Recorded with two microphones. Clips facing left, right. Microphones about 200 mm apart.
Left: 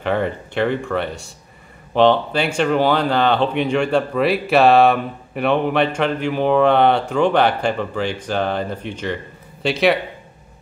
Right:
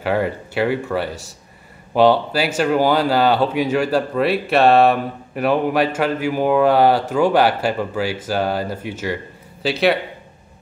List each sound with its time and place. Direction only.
0.0 s speech: 5° right (ahead or behind)